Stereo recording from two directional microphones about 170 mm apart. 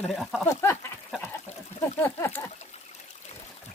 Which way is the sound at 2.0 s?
15° left (ahead or behind).